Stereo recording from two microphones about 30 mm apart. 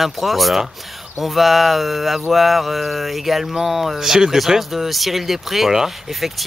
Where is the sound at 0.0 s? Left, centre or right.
Centre.